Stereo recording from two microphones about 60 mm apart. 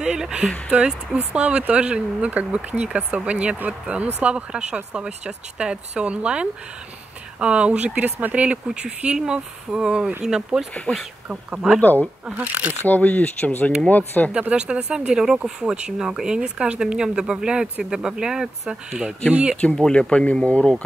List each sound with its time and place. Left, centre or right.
0.0 s speech: centre
8.6 s speech: centre
11.8 s speech: left
14.5 s speech: centre
19.5 s speech: centre